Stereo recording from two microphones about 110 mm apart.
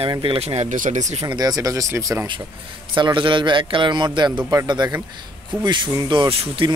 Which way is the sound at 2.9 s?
45° right (ahead or behind).